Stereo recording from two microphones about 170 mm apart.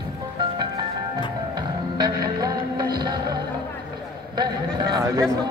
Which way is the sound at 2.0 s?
20° right (ahead or behind).